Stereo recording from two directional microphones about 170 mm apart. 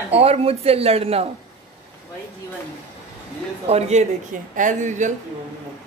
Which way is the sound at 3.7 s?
40° right (ahead or behind).